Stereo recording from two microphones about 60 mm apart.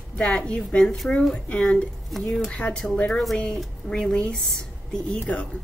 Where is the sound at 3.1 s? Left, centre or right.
Centre.